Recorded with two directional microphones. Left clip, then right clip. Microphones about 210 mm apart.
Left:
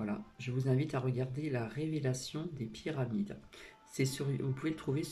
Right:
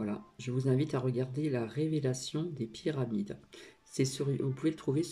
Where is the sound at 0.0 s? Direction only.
15° right (ahead or behind).